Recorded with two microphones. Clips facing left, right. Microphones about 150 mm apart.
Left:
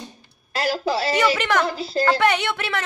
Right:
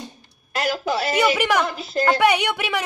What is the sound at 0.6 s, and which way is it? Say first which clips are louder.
Speech: even; 30° left (ahead or behind).